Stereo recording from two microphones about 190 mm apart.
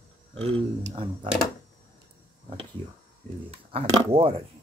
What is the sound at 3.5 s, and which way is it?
Speech, 30° right (ahead or behind).